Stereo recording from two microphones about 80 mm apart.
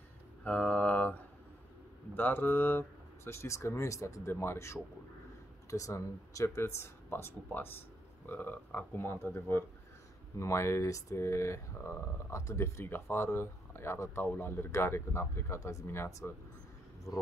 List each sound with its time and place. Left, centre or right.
0.4 s mantra: centre
2.1 s speech: left